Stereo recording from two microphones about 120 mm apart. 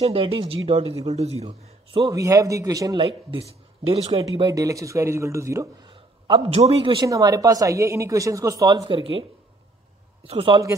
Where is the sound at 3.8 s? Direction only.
55° right (ahead or behind).